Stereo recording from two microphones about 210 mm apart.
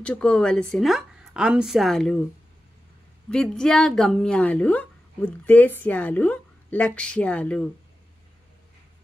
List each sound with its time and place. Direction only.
0.0 s a woman's voice: 5° left (ahead or behind)
3.3 s a woman's voice: 5° left (ahead or behind)